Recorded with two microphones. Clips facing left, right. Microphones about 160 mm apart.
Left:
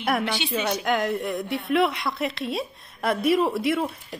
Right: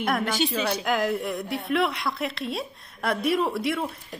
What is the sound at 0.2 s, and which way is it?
Speech, 45° right (ahead or behind).